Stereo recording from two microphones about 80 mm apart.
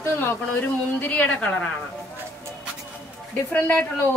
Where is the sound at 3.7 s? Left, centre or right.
Left.